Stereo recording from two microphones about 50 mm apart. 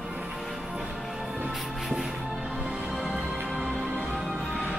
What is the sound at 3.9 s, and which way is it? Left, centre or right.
Music, right.